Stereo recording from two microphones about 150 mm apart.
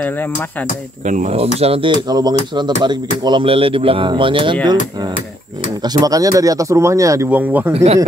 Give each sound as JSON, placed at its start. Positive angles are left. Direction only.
{"t": 0.0, "sound": "speech", "side_deg": 15}
{"t": 1.0, "sound": "speech", "side_deg": -55}
{"t": 5.8, "sound": "speech", "side_deg": -25}
{"t": 7.7, "sound": "speech", "side_deg": -45}